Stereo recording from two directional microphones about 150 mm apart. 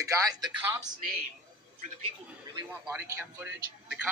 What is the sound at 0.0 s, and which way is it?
Speech, 20° right (ahead or behind).